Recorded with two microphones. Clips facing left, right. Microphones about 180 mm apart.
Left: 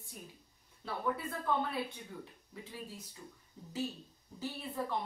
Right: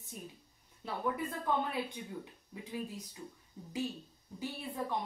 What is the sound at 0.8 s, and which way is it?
Speech, 15° right (ahead or behind).